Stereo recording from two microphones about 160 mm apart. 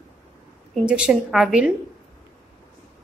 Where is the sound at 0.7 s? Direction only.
5° right (ahead or behind).